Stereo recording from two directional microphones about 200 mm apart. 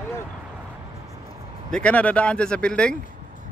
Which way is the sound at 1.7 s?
5° left (ahead or behind).